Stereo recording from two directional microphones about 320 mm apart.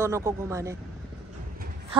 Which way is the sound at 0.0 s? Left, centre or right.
Centre.